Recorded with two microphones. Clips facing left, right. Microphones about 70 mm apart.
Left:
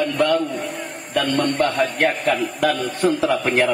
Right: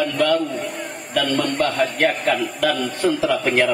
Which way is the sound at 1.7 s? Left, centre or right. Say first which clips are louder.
Even; centre.